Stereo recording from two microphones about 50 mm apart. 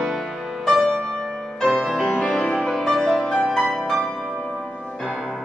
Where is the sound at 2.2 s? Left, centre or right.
Centre.